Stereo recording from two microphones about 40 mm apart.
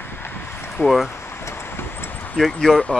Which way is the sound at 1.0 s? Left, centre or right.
Left.